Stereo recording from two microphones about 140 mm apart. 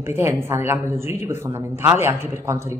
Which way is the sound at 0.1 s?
20° right (ahead or behind).